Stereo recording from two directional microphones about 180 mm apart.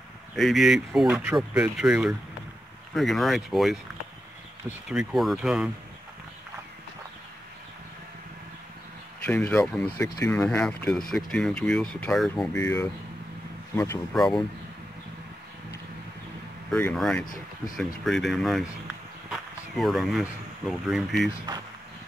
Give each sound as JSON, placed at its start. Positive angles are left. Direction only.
{"t": 0.4, "sound": "speech", "side_deg": 0}
{"t": 9.2, "sound": "speech", "side_deg": 10}
{"t": 9.9, "sound": "speech", "side_deg": 20}
{"t": 12.5, "sound": "speech", "side_deg": 15}
{"t": 16.7, "sound": "speech", "side_deg": 5}